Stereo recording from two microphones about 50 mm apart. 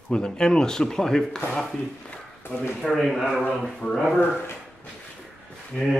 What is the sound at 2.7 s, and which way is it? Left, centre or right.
Speech, centre.